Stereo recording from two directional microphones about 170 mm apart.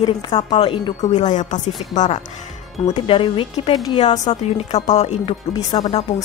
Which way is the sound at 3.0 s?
30° left (ahead or behind).